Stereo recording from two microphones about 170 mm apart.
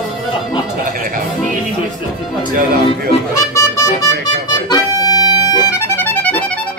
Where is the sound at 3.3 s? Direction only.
15° left (ahead or behind).